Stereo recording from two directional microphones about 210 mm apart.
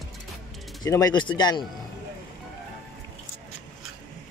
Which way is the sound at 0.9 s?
15° left (ahead or behind).